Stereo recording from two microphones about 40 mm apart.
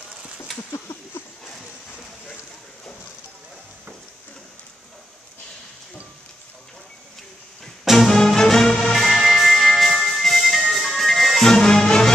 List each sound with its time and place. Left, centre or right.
0.7 s a sound: left
7.8 s music: centre
8.1 s music: centre
11.4 s music: centre